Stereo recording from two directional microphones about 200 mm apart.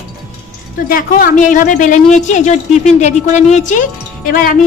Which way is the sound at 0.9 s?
40° left (ahead or behind).